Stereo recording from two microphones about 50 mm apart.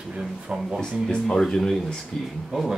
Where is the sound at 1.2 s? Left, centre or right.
Centre.